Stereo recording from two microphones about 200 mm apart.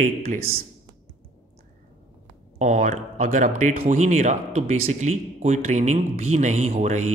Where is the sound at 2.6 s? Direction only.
35° right (ahead or behind).